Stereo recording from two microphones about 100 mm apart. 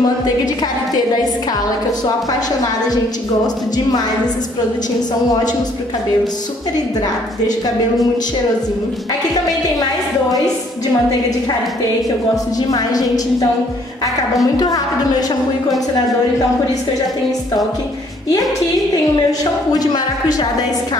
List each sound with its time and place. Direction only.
7.4 s a woman's voice: 40° left (ahead or behind)
9.5 s a woman's voice: 40° left (ahead or behind)
12.5 s a woman's voice: 40° left (ahead or behind)
19.7 s a woman's voice: 40° left (ahead or behind)